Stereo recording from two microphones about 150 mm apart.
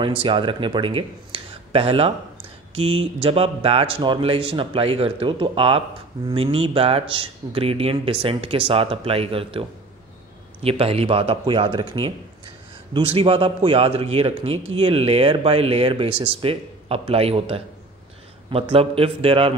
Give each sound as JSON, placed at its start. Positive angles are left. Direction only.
{"t": 0.2, "sound": "speech", "side_deg": -35}